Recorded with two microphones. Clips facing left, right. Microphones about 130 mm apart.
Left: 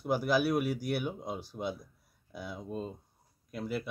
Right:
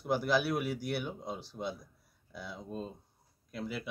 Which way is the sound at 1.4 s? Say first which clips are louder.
Left 2 dB; 50° left (ahead or behind).